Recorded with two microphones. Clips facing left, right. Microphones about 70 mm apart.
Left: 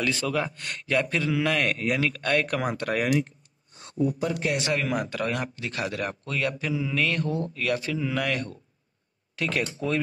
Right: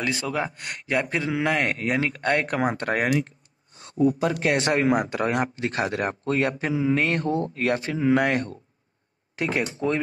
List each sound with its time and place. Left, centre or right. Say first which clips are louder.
0.0 s a man's voice: even; right
4.6 s a man's voice: right 5 dB; right